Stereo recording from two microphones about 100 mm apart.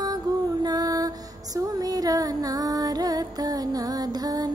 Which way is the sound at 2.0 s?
40° right (ahead or behind).